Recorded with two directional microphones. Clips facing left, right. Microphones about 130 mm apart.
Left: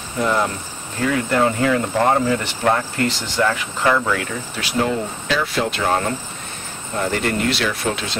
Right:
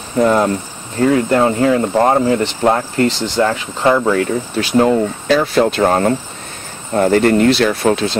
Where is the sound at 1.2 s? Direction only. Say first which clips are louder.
Right 5 dB; 30° right (ahead or behind).